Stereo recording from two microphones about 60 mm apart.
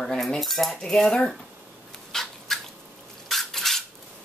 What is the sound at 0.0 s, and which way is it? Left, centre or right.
Cutlery, centre.